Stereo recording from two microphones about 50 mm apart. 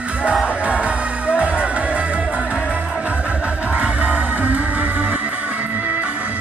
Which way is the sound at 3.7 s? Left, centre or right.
Right.